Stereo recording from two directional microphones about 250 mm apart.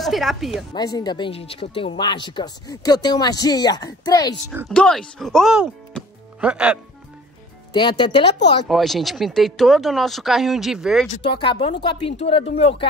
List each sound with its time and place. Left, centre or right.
0.0 s speech: centre
0.7 s speech: centre
4.5 s speech: centre
7.7 s speech: centre
8.6 s speech: centre
11.2 s speech: centre